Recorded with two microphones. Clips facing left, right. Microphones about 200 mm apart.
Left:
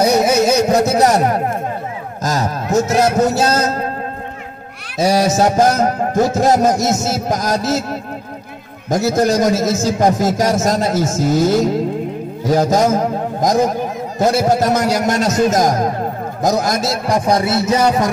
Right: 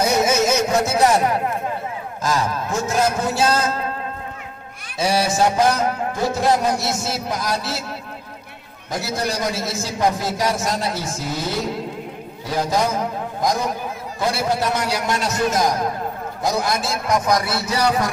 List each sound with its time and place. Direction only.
0.0 s a sound: 35° left (ahead or behind)
2.2 s a man's voice: 40° left (ahead or behind)
4.9 s music: 40° left (ahead or behind)
16.4 s a man's voice: 45° left (ahead or behind); by 17.6 s 25° left (ahead or behind)